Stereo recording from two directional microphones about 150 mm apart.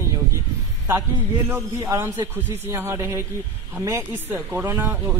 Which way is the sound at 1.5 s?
15° right (ahead or behind).